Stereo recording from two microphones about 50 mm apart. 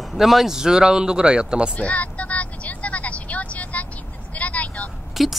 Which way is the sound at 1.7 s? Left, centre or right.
Left.